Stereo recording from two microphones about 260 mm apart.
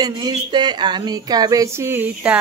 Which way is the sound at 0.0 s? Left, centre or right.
Centre.